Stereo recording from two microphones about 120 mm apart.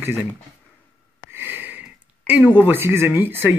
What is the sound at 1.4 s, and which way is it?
Sniff, 15° right (ahead or behind).